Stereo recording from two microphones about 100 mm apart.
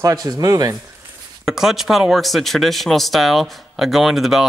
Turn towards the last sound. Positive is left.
turn(degrees=-5)  # may be behind; listen again after turning